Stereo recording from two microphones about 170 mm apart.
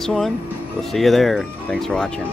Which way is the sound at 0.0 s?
Centre (ahead or behind).